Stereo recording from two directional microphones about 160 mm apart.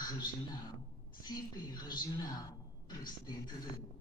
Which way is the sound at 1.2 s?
25° left (ahead or behind).